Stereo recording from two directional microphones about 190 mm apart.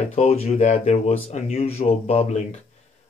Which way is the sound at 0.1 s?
35° left (ahead or behind).